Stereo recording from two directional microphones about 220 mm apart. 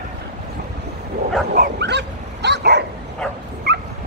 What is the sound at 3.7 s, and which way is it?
Dog, 50° right (ahead or behind).